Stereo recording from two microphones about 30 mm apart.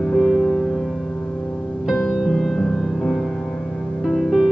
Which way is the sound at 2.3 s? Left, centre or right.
Centre.